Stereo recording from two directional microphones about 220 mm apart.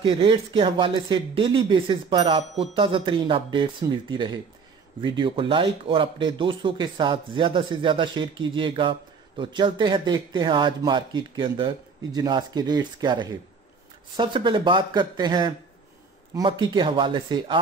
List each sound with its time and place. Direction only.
0.0 s speech: 20° right (ahead or behind)